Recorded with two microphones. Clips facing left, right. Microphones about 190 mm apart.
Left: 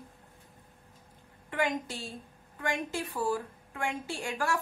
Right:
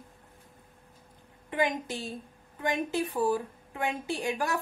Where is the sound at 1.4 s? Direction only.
20° right (ahead or behind).